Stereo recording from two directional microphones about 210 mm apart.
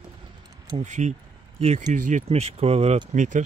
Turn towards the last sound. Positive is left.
turn(degrees=-35)  # may be behind; listen again after turning